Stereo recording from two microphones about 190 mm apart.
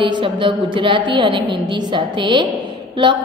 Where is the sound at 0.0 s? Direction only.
25° right (ahead or behind).